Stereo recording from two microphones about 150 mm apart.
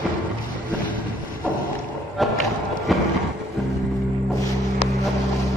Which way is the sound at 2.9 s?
Centre (ahead or behind).